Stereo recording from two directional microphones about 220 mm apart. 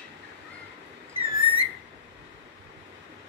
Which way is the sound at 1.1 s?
25° right (ahead or behind).